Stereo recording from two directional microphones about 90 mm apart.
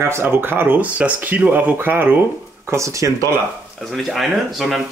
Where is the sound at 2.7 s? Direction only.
35° right (ahead or behind).